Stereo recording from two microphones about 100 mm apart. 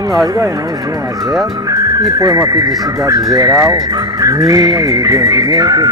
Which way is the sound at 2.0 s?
40° right (ahead or behind).